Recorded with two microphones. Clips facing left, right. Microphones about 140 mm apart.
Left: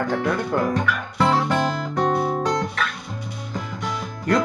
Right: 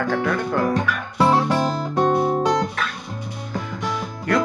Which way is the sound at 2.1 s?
20° right (ahead or behind).